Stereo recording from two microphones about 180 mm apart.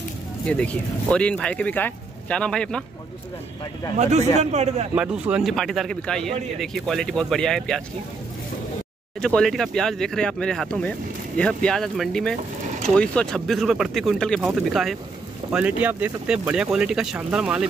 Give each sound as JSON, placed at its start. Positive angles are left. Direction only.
{"t": 0.5, "sound": "speech", "side_deg": 5}
{"t": 4.0, "sound": "speech", "side_deg": -40}
{"t": 4.9, "sound": "speech", "side_deg": -5}
{"t": 9.2, "sound": "speech", "side_deg": 5}